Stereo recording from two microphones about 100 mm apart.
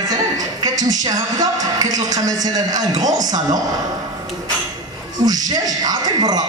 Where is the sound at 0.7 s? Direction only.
40° right (ahead or behind).